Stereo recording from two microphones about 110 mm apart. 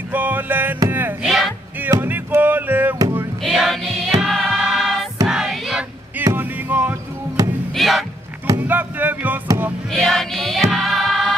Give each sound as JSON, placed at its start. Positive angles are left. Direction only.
{"t": 0.1, "sound": "music", "side_deg": -15}
{"t": 1.2, "sound": "music", "side_deg": 0}
{"t": 1.9, "sound": "music", "side_deg": -20}
{"t": 3.4, "sound": "music", "side_deg": 0}
{"t": 6.2, "sound": "music", "side_deg": -15}
{"t": 7.7, "sound": "a sound", "side_deg": 0}
{"t": 8.5, "sound": "music", "side_deg": -15}
{"t": 9.8, "sound": "music", "side_deg": 5}